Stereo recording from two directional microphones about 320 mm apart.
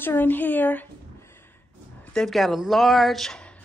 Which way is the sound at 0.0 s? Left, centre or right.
Centre.